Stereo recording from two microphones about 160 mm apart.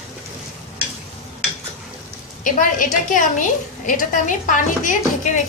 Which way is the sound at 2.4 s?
55° left (ahead or behind).